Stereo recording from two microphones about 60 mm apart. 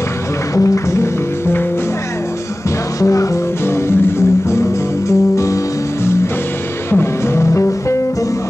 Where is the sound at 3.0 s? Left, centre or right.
Left.